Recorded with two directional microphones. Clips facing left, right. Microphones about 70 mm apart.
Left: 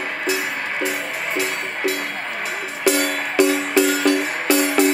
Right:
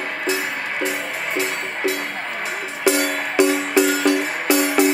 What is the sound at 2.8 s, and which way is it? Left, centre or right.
Music, right.